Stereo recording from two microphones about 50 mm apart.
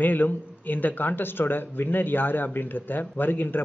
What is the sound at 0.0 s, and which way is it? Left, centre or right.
Speech, left.